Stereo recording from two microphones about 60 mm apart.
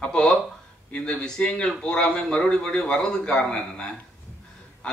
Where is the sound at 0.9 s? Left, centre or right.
Centre.